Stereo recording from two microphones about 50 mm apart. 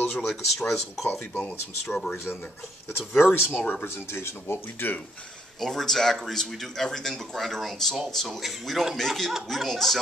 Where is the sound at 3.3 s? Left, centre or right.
Left.